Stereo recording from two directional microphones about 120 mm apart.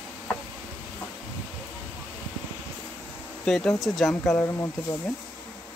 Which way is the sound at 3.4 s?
5° left (ahead or behind).